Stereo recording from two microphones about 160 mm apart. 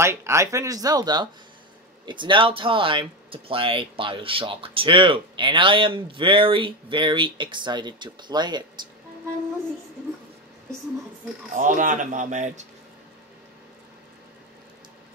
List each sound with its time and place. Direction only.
0.0 s speech: 15° right (ahead or behind)
11.5 s speech: 55° right (ahead or behind)